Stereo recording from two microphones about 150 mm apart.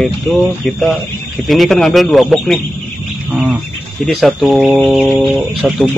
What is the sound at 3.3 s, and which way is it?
Bird, 10° right (ahead or behind).